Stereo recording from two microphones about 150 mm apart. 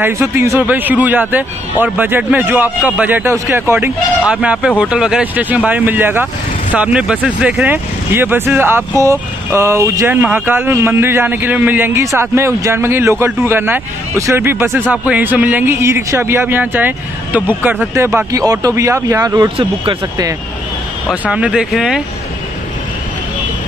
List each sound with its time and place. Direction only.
0.0 s speech: 15° right (ahead or behind)
19.5 s speech: 35° right (ahead or behind)
21.1 s speech: 10° right (ahead or behind)